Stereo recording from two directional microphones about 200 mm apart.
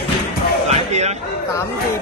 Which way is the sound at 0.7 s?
35° right (ahead or behind).